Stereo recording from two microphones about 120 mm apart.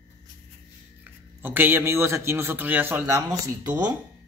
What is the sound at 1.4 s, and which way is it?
A man's voice, 15° right (ahead or behind).